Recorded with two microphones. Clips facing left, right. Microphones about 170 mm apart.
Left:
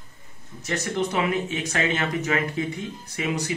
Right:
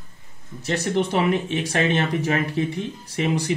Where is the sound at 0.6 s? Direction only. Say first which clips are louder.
Right 4 dB; 30° right (ahead or behind).